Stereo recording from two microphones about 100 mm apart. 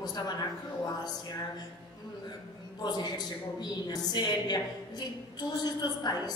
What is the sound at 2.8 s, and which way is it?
A woman's voice, 45° left (ahead or behind).